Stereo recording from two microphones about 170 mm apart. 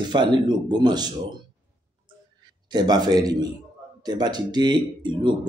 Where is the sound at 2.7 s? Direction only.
25° right (ahead or behind).